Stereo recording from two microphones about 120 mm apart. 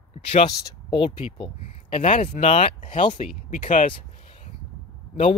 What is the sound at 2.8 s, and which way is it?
Speech, 45° left (ahead or behind).